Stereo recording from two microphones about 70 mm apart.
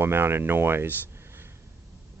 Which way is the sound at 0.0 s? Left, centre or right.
Right.